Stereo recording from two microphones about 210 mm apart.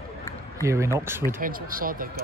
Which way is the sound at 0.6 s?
15° right (ahead or behind).